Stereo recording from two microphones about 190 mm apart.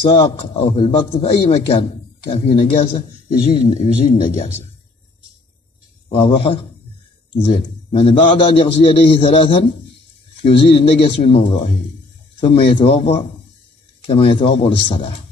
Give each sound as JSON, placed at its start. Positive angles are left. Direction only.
{"t": 0.0, "sound": "a man's voice", "side_deg": 25}
{"t": 6.0, "sound": "a man's voice", "side_deg": 30}